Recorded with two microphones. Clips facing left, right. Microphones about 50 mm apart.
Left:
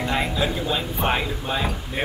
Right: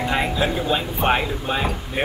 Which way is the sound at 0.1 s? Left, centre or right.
Centre.